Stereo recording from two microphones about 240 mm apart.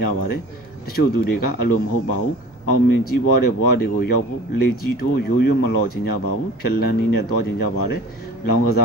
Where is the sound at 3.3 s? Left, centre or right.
Left.